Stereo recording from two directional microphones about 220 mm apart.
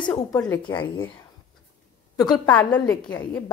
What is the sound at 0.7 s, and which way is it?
Speech, 20° left (ahead or behind).